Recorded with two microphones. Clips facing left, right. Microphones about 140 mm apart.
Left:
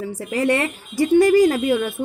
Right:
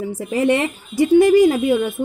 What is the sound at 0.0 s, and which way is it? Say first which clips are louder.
Speech: right 3 dB; 25° right (ahead or behind).